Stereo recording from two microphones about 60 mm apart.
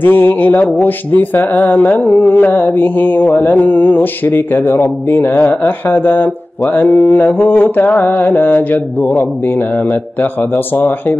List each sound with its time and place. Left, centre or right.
0.0 s speech: left